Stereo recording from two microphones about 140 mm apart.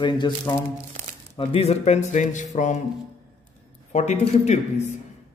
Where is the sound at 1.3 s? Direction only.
45° left (ahead or behind); by 2.4 s 60° left (ahead or behind).